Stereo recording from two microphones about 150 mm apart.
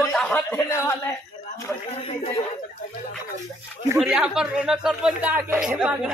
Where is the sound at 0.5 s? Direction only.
15° left (ahead or behind).